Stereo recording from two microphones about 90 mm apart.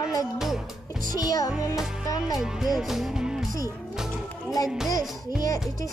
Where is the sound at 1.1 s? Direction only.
40° left (ahead or behind).